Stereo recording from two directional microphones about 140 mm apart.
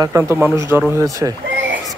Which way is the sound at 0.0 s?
20° right (ahead or behind).